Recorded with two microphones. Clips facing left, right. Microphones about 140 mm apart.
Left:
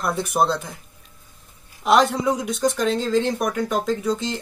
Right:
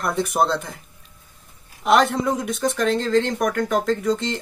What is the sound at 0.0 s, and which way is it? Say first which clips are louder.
Speech: even; centre (ahead or behind).